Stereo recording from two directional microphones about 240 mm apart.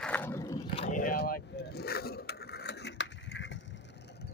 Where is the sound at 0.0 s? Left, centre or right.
Centre.